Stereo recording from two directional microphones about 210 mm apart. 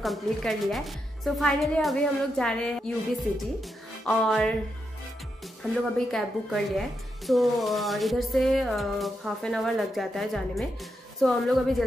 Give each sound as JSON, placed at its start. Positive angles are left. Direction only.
{"t": 0.0, "sound": "speech", "side_deg": 0}
{"t": 4.0, "sound": "speech", "side_deg": 0}
{"t": 5.6, "sound": "speech", "side_deg": 0}